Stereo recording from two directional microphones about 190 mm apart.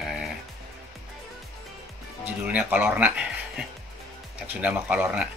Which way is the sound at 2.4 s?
5° right (ahead or behind).